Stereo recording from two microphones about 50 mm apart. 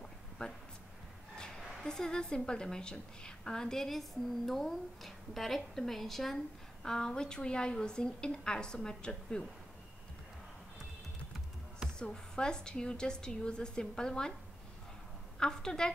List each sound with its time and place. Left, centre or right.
0.4 s a woman's voice: left
12.0 s a woman's voice: centre
15.3 s a woman's voice: centre